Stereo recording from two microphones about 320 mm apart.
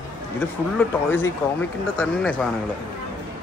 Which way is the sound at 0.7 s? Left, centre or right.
Centre.